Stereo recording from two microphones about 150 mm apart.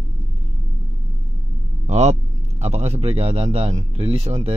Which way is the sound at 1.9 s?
45° right (ahead or behind).